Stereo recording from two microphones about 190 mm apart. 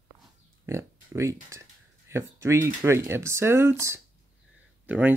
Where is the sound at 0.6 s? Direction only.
15° right (ahead or behind).